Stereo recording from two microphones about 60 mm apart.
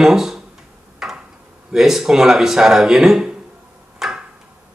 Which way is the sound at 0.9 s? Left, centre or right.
Centre.